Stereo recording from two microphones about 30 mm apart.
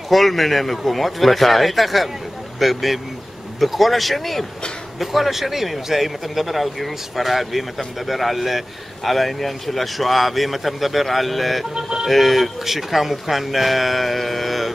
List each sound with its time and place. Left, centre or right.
0.1 s speech: centre
11.7 s speech: right
12.1 s speech: centre